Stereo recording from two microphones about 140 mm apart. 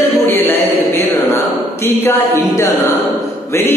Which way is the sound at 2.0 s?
20° left (ahead or behind).